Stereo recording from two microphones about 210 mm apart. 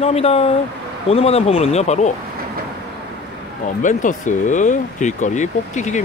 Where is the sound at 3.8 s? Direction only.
35° left (ahead or behind).